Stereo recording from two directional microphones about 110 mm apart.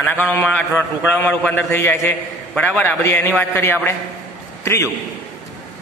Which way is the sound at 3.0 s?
20° left (ahead or behind).